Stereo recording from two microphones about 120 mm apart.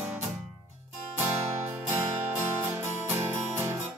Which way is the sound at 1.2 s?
20° right (ahead or behind).